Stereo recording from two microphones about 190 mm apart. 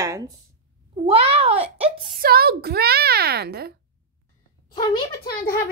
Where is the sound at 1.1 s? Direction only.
30° right (ahead or behind).